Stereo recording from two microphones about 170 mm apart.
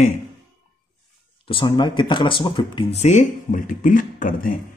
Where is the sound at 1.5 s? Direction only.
30° left (ahead or behind).